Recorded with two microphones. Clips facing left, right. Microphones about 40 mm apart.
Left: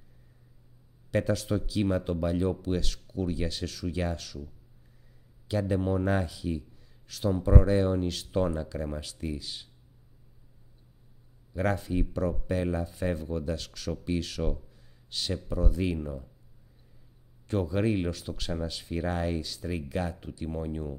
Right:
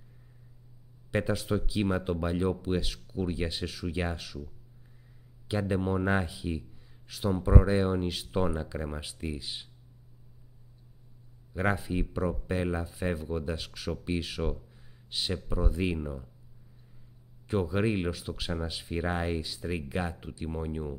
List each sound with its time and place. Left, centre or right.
1.1 s speech: centre
5.5 s speech: centre
11.5 s speech: centre
17.5 s speech: centre